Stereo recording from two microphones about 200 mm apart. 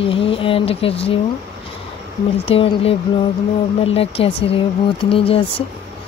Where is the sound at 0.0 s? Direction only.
25° left (ahead or behind).